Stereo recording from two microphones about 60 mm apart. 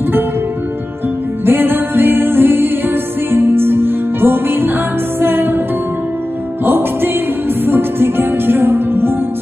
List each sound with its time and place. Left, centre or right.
1.4 s music: right
6.6 s music: right